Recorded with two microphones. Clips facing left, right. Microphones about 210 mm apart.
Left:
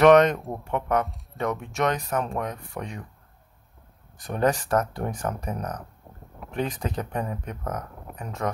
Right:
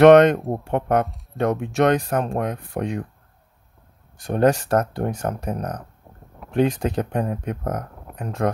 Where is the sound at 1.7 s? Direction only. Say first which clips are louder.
Right 8 dB; 30° right (ahead or behind).